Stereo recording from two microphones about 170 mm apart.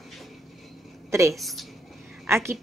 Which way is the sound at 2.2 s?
15° right (ahead or behind).